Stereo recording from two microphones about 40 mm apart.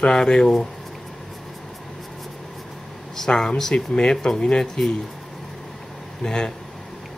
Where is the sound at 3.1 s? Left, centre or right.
Centre.